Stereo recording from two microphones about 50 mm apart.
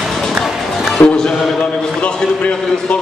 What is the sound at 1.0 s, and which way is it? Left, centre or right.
Music, left.